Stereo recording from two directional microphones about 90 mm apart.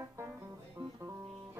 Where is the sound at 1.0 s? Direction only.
30° right (ahead or behind).